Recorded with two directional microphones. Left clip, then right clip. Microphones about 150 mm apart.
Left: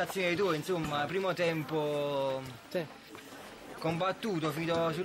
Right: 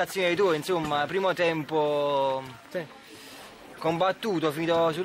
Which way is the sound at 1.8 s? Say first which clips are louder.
Right 9 dB; 40° left (ahead or behind).